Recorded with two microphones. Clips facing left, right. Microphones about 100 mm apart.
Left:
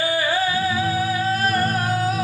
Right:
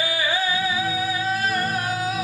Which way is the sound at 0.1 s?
40° left (ahead or behind).